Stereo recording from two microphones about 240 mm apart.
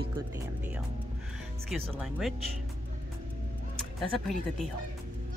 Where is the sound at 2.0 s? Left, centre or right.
Centre.